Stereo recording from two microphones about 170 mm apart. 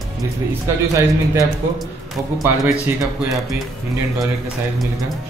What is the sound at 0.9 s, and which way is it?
A man's voice, 20° right (ahead or behind).